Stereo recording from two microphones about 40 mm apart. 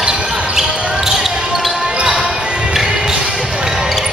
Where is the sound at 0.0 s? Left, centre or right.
Centre.